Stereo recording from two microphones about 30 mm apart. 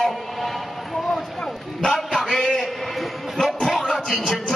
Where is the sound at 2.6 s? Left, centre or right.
Centre.